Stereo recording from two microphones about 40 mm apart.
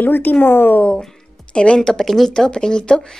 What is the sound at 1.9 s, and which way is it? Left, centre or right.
Speech, centre.